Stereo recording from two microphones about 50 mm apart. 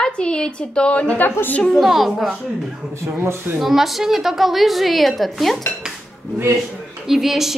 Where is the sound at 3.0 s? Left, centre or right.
Right.